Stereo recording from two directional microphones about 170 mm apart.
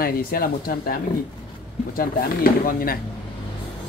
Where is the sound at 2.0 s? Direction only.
55° left (ahead or behind).